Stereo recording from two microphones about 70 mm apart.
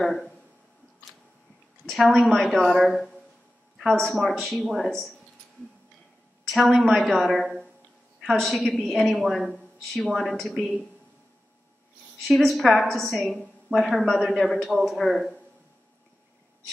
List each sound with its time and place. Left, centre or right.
0.0 s a woman's voice: centre
1.9 s a woman's voice: centre
6.4 s a woman's voice: centre
12.3 s a woman's voice: centre